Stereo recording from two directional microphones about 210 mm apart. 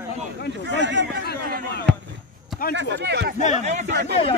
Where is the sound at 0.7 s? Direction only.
55° right (ahead or behind).